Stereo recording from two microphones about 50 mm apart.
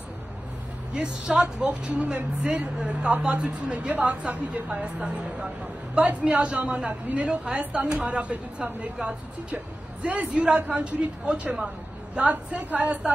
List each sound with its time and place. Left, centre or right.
0.9 s speech: centre